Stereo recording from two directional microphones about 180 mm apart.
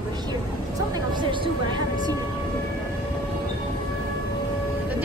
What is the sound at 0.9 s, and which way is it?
Speech, 25° right (ahead or behind).